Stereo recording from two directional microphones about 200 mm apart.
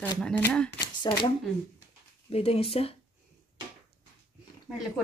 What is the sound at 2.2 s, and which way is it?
Speech, 30° left (ahead or behind).